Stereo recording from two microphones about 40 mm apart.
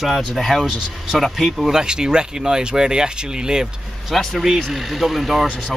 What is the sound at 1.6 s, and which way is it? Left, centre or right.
Speech, centre.